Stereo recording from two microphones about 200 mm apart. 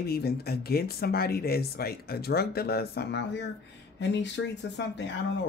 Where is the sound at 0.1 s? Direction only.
50° left (ahead or behind).